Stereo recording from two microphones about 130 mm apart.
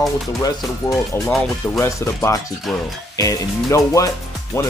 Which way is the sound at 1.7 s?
20° left (ahead or behind).